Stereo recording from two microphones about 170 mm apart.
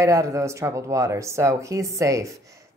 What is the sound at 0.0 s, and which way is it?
Speech, 20° right (ahead or behind).